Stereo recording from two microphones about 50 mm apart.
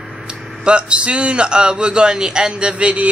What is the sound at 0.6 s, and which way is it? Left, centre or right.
A man's voice, right.